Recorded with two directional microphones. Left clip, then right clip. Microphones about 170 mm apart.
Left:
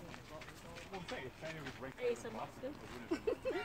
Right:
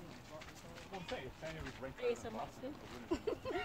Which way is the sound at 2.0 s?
50° right (ahead or behind).